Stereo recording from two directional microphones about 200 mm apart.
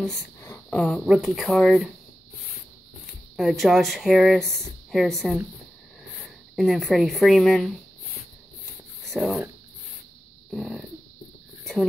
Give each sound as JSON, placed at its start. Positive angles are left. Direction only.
{"t": 0.4, "sound": "a sound", "side_deg": 10}
{"t": 0.7, "sound": "speech", "side_deg": 0}
{"t": 3.3, "sound": "speech", "side_deg": 0}
{"t": 6.5, "sound": "speech", "side_deg": 0}
{"t": 9.1, "sound": "speech", "side_deg": 0}
{"t": 10.5, "sound": "a sound", "side_deg": 0}